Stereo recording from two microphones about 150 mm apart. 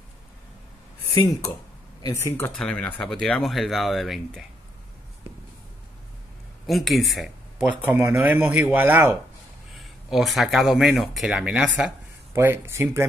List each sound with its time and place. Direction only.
1.0 s speech: 20° left (ahead or behind); by 4.5 s centre (ahead or behind)
6.6 s speech: centre (ahead or behind)
7.8 s speech: 15° right (ahead or behind)
9.8 s speech: centre (ahead or behind)